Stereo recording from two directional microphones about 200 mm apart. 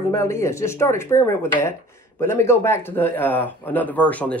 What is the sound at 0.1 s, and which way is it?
Speech, 15° left (ahead or behind).